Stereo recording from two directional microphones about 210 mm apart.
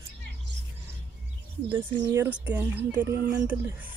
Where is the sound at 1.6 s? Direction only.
10° right (ahead or behind).